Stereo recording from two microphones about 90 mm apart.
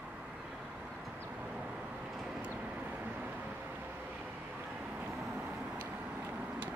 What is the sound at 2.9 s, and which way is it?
Vehicle, 15° right (ahead or behind).